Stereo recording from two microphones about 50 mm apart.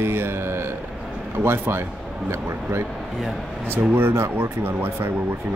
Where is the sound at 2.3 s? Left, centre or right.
Right.